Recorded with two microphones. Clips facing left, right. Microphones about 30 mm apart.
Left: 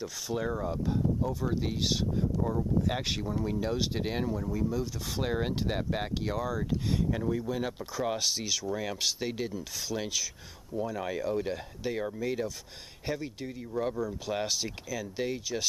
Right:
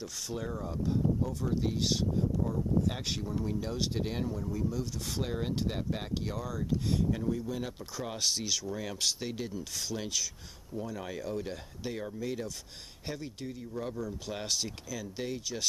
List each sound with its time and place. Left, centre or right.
0.0 s rub: centre
0.5 s speech: left
0.8 s rub: centre
2.4 s speech: left
4.3 s rub: centre
5.2 s speech: left
6.1 s rub: centre
11.8 s speech: centre
12.2 s rub: centre
13.0 s speech: centre
13.5 s rub: centre
14.0 s rub: centre